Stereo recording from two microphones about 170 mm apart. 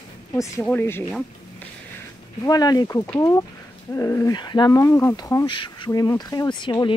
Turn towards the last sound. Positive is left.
turn(degrees=25)  # may be behind; listen again after turning